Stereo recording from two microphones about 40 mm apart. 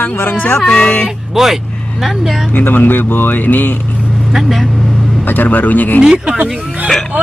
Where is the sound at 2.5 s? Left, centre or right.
Left.